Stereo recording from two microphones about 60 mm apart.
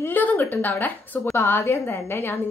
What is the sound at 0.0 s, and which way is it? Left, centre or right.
A woman's voice, left.